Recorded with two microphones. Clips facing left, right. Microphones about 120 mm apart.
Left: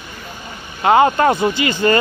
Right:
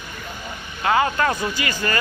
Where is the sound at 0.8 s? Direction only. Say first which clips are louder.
Left 7 dB; 30° left (ahead or behind).